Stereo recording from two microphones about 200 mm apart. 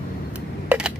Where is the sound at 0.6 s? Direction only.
5° right (ahead or behind).